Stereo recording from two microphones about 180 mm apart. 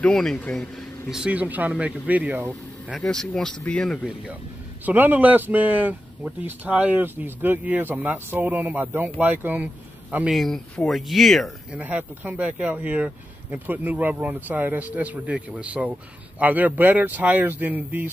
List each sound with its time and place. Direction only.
0.0 s speech: 5° left (ahead or behind)
1.1 s speech: 5° right (ahead or behind)
3.0 s speech: 5° left (ahead or behind)
4.8 s speech: 10° right (ahead or behind)